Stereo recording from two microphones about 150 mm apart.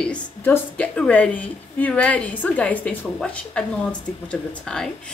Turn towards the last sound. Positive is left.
turn(degrees=5)  # may be behind; listen again after turning